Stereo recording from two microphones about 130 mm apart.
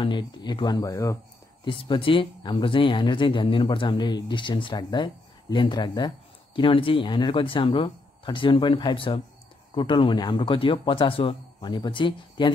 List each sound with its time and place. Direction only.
0.0 s speech: 35° left (ahead or behind)
1.6 s speech: 40° left (ahead or behind)